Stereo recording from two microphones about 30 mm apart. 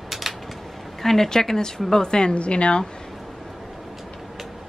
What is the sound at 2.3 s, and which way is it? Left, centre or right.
Speech, left.